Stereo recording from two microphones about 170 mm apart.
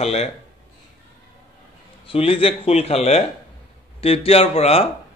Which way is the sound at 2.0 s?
35° left (ahead or behind).